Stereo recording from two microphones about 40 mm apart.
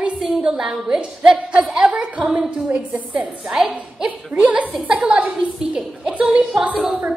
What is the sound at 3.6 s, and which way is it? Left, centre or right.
A woman's voice, right.